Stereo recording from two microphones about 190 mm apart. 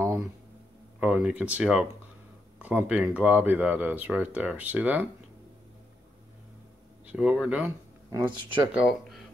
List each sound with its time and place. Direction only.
0.9 s speech: 5° right (ahead or behind)
7.1 s speech: 5° right (ahead or behind)
8.1 s speech: 20° right (ahead or behind)
8.7 s speech: centre (ahead or behind)